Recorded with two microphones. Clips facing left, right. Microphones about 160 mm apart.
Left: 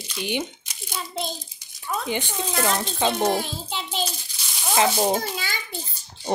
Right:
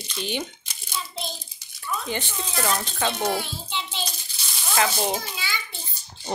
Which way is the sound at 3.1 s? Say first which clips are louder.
Left 4 dB; 40° left (ahead or behind).